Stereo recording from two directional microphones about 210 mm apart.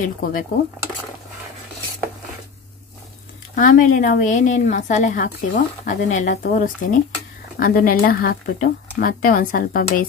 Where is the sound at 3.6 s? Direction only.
40° left (ahead or behind).